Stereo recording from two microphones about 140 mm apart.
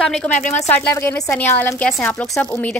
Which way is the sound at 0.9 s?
20° left (ahead or behind).